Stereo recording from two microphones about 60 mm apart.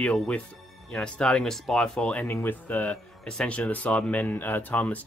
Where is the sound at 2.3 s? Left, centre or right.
Left.